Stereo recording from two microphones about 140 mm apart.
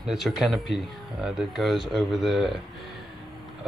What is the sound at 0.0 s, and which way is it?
Speech, 5° right (ahead or behind).